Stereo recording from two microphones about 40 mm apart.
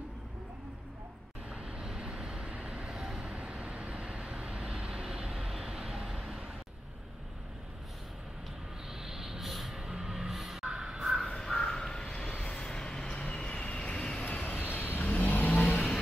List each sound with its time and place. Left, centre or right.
1.8 s vehicle: centre
5.0 s vehicle: centre
9.0 s music: centre
11.2 s a sound: centre
12.4 s vehicle: left
14.6 s vehicle: left
15.0 s vehicle: left